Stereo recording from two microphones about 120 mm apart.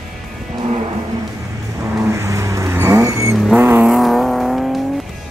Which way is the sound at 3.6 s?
20° right (ahead or behind).